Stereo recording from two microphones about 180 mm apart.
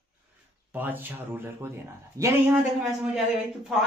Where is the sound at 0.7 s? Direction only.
10° right (ahead or behind).